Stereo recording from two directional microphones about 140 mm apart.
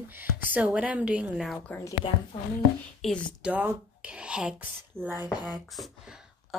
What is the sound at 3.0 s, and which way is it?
Speech, centre (ahead or behind).